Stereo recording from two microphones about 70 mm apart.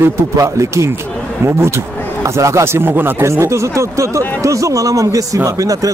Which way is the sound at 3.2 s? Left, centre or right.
Right.